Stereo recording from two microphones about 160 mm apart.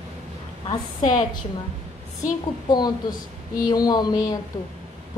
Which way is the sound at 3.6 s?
25° left (ahead or behind).